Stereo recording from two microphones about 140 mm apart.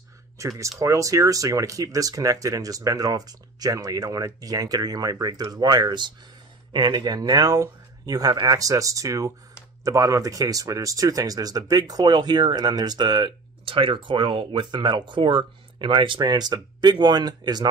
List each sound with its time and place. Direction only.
0.4 s speech: 20° right (ahead or behind)